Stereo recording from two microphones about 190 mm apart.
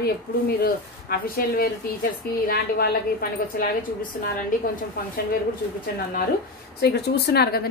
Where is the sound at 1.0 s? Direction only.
55° left (ahead or behind).